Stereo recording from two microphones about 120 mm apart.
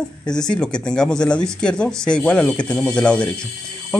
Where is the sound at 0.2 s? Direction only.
5° left (ahead or behind).